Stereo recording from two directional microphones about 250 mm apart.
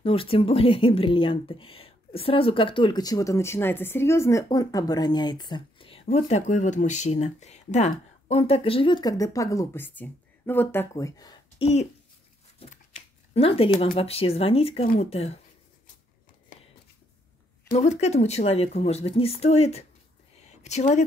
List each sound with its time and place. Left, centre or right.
0.0 s speech: left
17.7 s speech: left